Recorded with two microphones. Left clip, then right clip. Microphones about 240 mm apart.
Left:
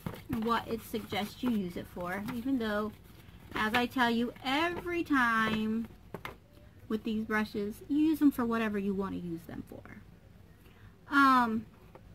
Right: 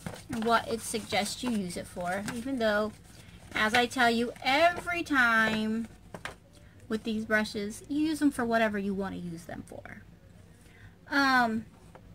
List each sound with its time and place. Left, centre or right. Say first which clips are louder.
0.0 s speech: right 3 dB; centre
6.9 s speech: right 4 dB; centre
11.1 s speech: even; centre